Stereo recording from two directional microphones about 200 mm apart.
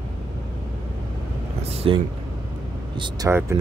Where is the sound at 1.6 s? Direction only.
30° right (ahead or behind).